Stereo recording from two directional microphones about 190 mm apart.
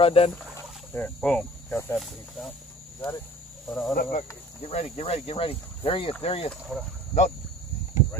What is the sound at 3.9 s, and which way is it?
Speech, 35° left (ahead or behind).